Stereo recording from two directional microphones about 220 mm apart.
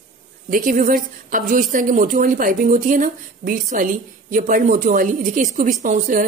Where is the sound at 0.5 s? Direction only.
35° right (ahead or behind).